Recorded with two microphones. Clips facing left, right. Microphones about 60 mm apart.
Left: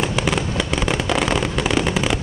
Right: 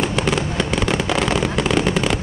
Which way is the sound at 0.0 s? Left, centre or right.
Centre.